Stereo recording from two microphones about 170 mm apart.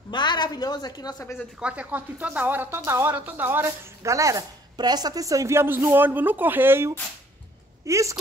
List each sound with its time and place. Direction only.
0.1 s a woman's voice: 25° left (ahead or behind)
1.6 s speech: 10° right (ahead or behind)